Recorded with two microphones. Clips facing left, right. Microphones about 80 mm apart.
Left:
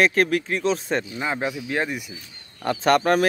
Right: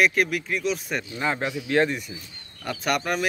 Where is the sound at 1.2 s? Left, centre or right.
Centre.